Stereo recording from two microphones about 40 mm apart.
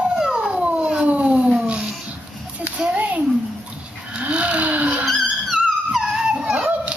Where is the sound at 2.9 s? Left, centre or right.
Right.